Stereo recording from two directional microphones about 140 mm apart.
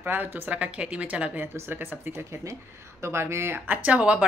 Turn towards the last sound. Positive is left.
turn(degrees=-10)  # may be behind; listen again after turning